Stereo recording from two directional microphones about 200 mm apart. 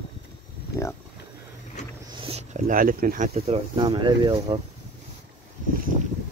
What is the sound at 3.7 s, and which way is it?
Speech, 20° right (ahead or behind).